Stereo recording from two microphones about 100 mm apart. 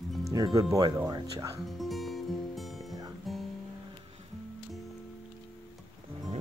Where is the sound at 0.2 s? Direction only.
40° right (ahead or behind).